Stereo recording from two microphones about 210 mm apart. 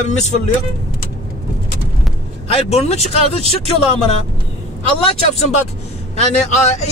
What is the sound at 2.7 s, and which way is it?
Speech, 30° left (ahead or behind).